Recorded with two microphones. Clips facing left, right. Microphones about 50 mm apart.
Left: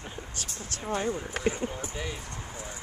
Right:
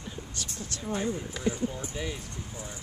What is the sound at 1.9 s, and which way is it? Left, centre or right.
Speech, centre.